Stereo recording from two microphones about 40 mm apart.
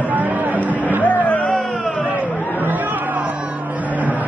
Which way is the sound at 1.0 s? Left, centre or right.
Left.